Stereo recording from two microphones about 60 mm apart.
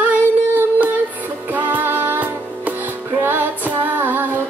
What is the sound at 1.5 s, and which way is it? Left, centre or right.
Music, right.